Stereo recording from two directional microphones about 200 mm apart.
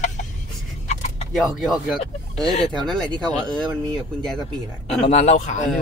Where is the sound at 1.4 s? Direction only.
Centre (ahead or behind).